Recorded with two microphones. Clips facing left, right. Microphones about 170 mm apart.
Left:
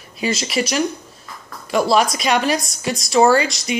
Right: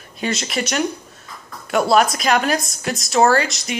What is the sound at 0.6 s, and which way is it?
Speech, 5° left (ahead or behind).